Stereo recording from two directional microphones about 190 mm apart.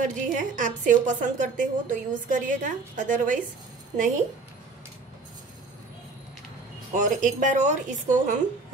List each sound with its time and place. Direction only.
0.0 s a woman's voice: 45° right (ahead or behind)
7.0 s speech: 40° right (ahead or behind)